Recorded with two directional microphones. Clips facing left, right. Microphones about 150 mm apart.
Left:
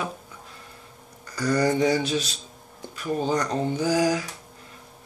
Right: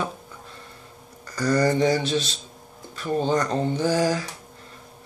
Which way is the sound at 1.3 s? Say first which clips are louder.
Right 1 dB; 10° left (ahead or behind).